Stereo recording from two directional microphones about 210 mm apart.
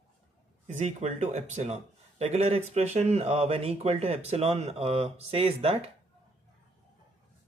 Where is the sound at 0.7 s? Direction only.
35° right (ahead or behind).